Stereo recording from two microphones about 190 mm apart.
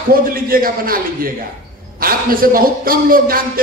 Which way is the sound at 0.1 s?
50° right (ahead or behind).